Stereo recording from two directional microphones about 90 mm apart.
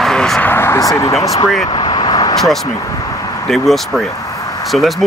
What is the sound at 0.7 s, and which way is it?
Speech, 40° left (ahead or behind).